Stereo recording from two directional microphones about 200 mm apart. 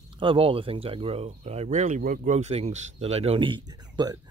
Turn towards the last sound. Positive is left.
turn(degrees=-20)  # may be behind; listen again after turning